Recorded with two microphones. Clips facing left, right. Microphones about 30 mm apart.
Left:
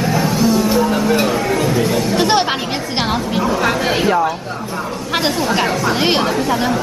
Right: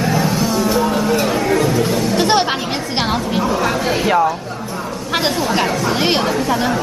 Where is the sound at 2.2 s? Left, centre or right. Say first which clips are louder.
Even; centre.